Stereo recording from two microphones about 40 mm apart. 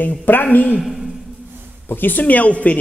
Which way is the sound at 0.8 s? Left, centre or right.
Centre.